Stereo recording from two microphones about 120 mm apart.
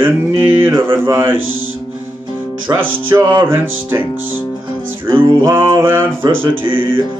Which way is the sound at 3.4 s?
20° right (ahead or behind).